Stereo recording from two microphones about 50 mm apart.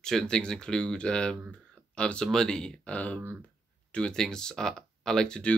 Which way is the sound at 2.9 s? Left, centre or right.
Left.